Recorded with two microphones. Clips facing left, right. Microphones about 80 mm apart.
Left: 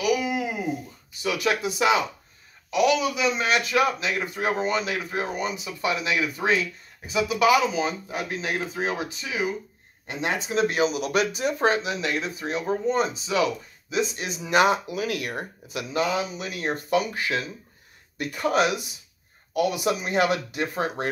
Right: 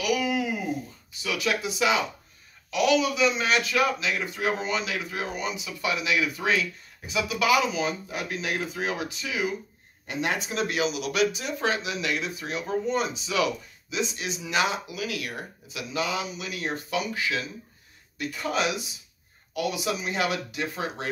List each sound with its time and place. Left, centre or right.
0.0 s a sound: centre
1.2 s speech: left
2.7 s speech: centre
4.0 s speech: left
10.8 s speech: left